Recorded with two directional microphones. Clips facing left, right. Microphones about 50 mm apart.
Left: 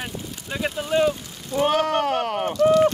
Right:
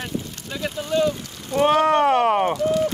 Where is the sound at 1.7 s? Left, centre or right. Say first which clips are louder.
Right 6 dB; right.